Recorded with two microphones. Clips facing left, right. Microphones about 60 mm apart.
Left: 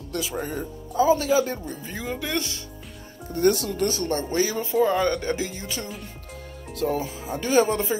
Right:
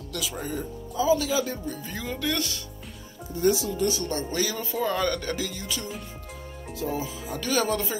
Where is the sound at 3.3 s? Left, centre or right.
Left.